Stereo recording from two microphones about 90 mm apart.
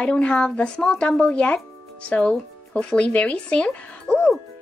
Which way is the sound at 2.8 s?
15° left (ahead or behind).